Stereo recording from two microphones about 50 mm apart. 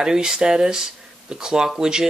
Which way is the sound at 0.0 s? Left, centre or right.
Centre.